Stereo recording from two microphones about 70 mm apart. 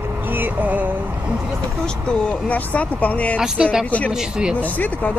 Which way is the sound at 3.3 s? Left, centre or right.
Centre.